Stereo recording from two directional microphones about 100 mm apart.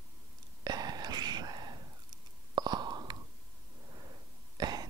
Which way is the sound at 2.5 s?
45° right (ahead or behind).